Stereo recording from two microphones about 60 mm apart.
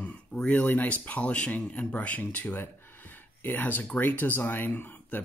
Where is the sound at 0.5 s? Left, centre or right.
Left.